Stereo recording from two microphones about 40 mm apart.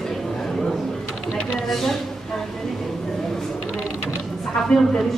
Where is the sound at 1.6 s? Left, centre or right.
Centre.